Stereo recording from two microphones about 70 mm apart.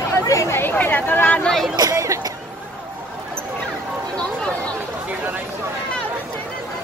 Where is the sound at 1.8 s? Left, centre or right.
Right.